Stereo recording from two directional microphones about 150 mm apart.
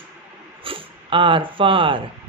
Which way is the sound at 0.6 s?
35° right (ahead or behind).